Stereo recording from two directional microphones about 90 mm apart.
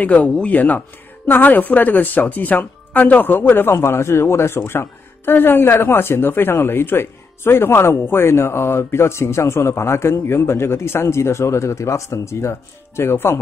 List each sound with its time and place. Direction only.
0.0 s speech: 15° left (ahead or behind)